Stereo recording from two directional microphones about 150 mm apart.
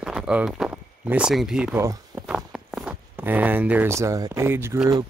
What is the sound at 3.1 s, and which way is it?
Speech, 10° right (ahead or behind).